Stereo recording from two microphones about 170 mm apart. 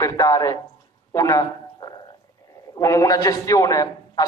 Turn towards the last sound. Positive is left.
turn(degrees=20)  # may be behind; listen again after turning